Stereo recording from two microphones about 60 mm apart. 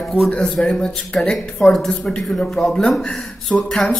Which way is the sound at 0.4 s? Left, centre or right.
Centre.